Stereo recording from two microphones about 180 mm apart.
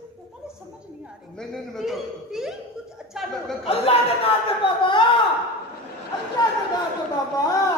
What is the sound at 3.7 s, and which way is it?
Speech, 35° left (ahead or behind).